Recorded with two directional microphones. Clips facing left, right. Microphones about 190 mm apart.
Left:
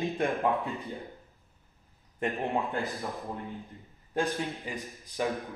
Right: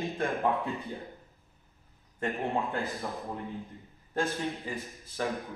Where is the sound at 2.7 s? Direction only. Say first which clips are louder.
Left 1 dB; centre (ahead or behind).